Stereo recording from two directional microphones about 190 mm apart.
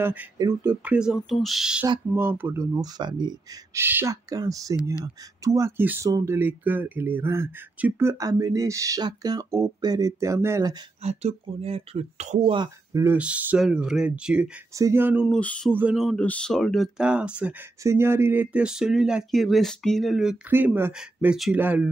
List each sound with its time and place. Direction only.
0.0 s speech: 10° right (ahead or behind)
11.0 s speech: 35° right (ahead or behind)
12.5 s speech: 15° right (ahead or behind)
14.7 s speech: 15° right (ahead or behind)
15.2 s speech: 5° left (ahead or behind)
15.7 s speech: 5° right (ahead or behind)